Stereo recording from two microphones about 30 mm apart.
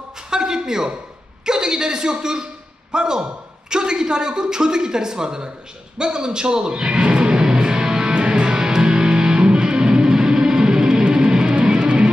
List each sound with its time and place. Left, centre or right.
0.3 s a sound: right
1.4 s a man's voice: right
5.9 s music: right
8.1 s music: right